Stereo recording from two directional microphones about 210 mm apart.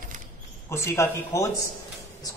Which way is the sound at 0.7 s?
15° left (ahead or behind).